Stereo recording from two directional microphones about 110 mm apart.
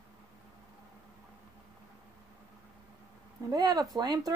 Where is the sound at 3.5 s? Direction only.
35° right (ahead or behind).